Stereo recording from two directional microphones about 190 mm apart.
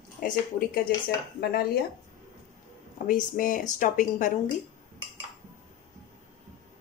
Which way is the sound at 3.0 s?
45° left (ahead or behind).